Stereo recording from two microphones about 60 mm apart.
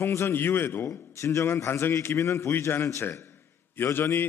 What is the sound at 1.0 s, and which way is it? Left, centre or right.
A man's voice, left.